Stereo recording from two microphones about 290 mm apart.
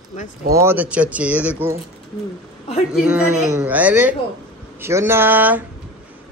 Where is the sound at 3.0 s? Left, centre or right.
Centre.